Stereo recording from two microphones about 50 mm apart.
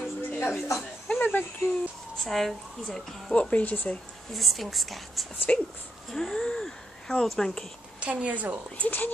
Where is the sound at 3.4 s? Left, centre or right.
Left.